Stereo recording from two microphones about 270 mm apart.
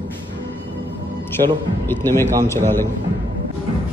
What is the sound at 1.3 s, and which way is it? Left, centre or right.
Speech, centre.